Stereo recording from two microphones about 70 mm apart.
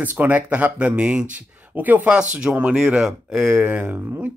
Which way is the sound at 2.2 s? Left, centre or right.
Centre.